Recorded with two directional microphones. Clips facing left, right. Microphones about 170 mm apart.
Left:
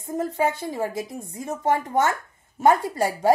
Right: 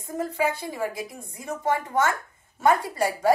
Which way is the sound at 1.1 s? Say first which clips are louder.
Left 3 dB; 25° left (ahead or behind).